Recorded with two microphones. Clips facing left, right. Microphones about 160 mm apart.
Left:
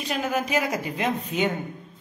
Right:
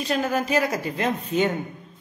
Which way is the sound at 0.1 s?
15° left (ahead or behind).